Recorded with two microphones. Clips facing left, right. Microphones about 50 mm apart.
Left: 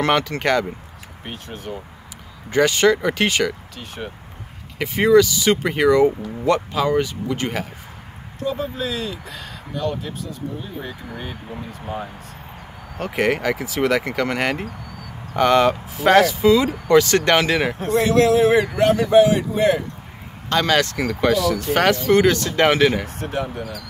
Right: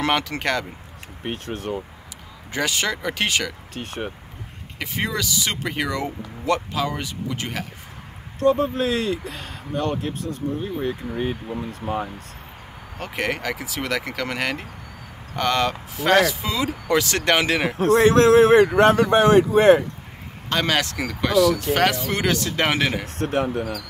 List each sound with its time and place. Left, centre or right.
0.0 s speech: centre
1.2 s speech: right
2.5 s speech: centre
3.7 s speech: right
4.7 s speech: centre
8.5 s speech: right
10.6 s speech: right
12.9 s speech: centre
18.0 s speech: right
20.4 s speech: centre
23.0 s speech: right